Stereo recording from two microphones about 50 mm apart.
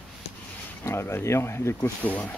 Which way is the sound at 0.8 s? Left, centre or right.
Left.